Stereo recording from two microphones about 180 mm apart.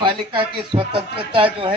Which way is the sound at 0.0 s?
30° right (ahead or behind).